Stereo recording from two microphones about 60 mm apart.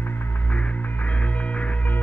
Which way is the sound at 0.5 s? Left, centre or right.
Left.